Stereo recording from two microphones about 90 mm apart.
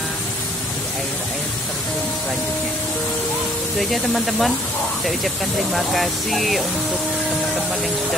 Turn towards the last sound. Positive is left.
turn(degrees=0)  # may be behind; listen again after turning